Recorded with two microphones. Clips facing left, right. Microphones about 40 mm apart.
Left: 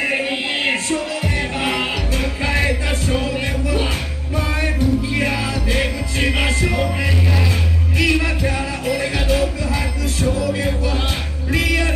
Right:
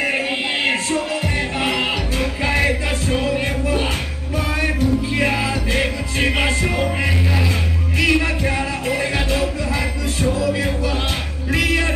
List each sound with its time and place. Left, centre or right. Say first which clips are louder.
0.0 s a sound: even; centre
0.8 s music: even; centre
5.1 s music: right 1 dB; centre
8.0 s music: right 1 dB; centre
8.4 s music: right 1 dB; centre